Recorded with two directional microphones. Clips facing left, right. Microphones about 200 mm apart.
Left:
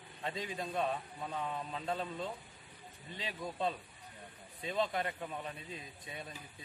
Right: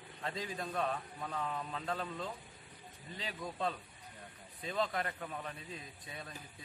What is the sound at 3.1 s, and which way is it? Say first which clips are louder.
A man's voice: left 1 dB; 25° left (ahead or behind).